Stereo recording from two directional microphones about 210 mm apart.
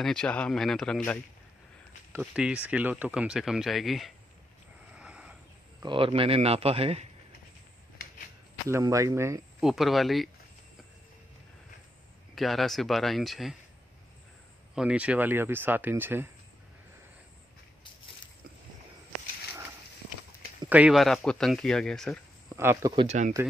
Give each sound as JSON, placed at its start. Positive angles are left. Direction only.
{"t": 0.0, "sound": "speech", "side_deg": 5}
{"t": 2.1, "sound": "speech", "side_deg": -5}
{"t": 4.9, "sound": "a sound", "side_deg": -5}
{"t": 5.8, "sound": "speech", "side_deg": -25}
{"t": 8.6, "sound": "speech", "side_deg": -15}
{"t": 9.6, "sound": "speech", "side_deg": 0}
{"t": 12.4, "sound": "speech", "side_deg": 0}
{"t": 14.8, "sound": "speech", "side_deg": -5}
{"t": 20.6, "sound": "speech", "side_deg": -5}
{"t": 22.6, "sound": "speech", "side_deg": -15}
{"t": 23.0, "sound": "speech", "side_deg": -35}